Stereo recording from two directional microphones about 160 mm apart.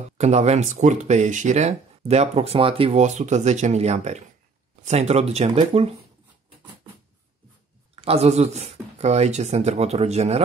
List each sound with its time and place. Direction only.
0.2 s speech: 45° right (ahead or behind)
7.9 s speech: 40° right (ahead or behind)